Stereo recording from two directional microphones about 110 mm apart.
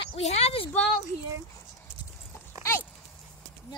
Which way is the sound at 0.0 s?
75° left (ahead or behind).